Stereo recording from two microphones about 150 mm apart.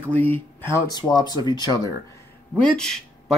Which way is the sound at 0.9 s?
30° left (ahead or behind).